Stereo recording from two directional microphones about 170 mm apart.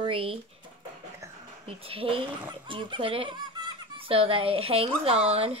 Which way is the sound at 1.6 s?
35° right (ahead or behind).